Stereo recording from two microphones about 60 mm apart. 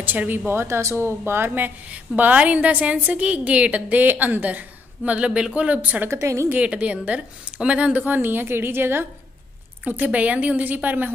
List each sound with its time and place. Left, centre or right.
0.0 s a woman's voice: right
0.5 s speech: right
1.9 s a woman's voice: right
6.0 s speech: right
6.5 s a woman's voice: right
9.8 s a woman's voice: right